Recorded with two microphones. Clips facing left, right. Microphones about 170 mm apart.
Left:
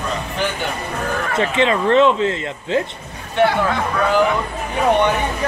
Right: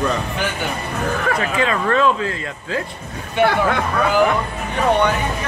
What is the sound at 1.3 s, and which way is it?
Speech, 25° left (ahead or behind).